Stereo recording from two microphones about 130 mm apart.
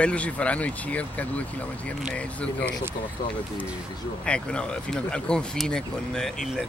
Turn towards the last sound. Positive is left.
turn(degrees=5)  # may be behind; listen again after turning